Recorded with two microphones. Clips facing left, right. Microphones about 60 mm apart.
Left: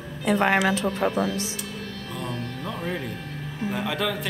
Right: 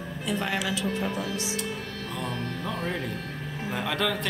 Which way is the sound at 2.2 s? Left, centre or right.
Centre.